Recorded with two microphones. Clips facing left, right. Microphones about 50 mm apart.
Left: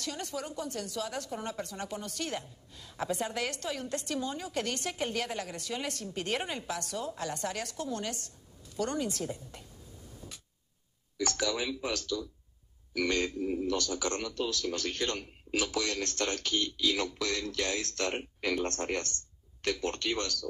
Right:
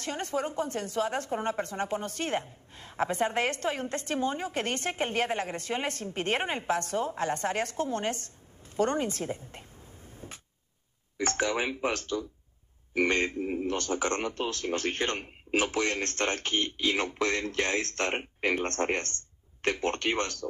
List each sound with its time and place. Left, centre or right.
0.0 s a woman's voice: right